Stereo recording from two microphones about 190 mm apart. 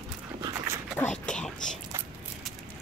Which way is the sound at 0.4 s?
20° right (ahead or behind).